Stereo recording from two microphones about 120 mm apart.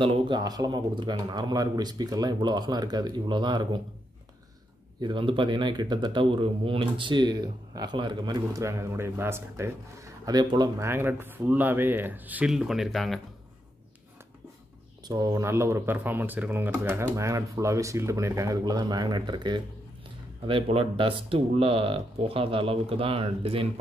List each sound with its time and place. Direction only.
0.0 s speech: 40° right (ahead or behind)
5.0 s speech: 45° right (ahead or behind)
8.6 s speech: 20° right (ahead or behind)
10.8 s speech: 20° right (ahead or behind); by 13.2 s centre (ahead or behind)
15.0 s speech: 30° right (ahead or behind)
20.9 s speech: 50° right (ahead or behind)